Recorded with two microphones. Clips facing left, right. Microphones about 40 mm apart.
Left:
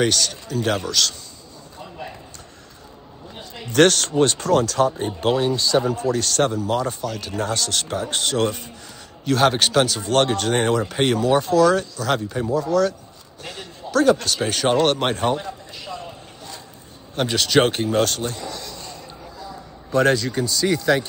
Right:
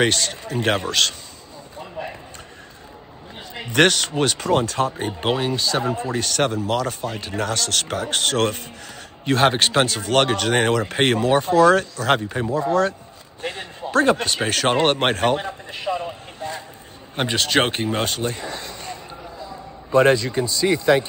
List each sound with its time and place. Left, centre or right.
0.0 s speech: right
3.3 s a sound: right
4.5 s a man's voice: right
5.5 s a man's voice: right
7.3 s speech: right
9.2 s a man's voice: right
15.0 s a sound: right
17.1 s a man's voice: centre
18.4 s a sound: right
19.9 s a man's voice: centre